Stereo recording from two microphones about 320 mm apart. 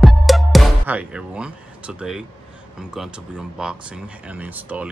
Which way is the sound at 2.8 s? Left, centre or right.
Centre.